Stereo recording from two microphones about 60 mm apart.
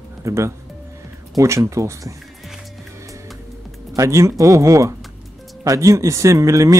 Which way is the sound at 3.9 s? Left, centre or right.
Right.